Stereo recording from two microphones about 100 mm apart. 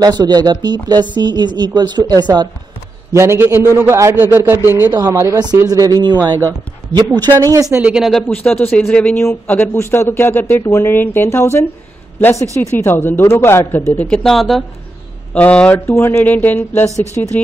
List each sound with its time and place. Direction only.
0.0 s speech: 40° right (ahead or behind)
3.1 s a man's voice: 30° right (ahead or behind)
4.9 s speech: 35° right (ahead or behind)
7.7 s speech: 10° right (ahead or behind); by 13.8 s 20° left (ahead or behind)
13.9 s speech: 10° left (ahead or behind)
15.3 s speech: 10° left (ahead or behind)